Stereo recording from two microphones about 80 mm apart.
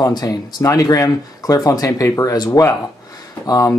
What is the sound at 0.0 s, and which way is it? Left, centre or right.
Speech, left.